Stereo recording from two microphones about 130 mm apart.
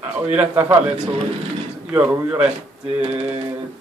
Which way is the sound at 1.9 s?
15° right (ahead or behind).